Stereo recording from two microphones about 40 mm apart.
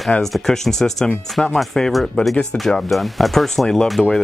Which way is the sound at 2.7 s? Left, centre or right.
Centre.